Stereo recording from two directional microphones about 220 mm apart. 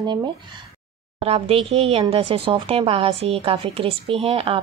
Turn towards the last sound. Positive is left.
turn(degrees=-25)  # may be behind; listen again after turning